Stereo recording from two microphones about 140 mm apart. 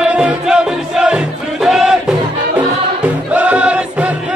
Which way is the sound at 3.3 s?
10° right (ahead or behind).